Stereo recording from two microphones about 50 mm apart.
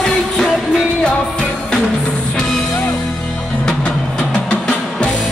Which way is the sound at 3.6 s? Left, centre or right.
Centre.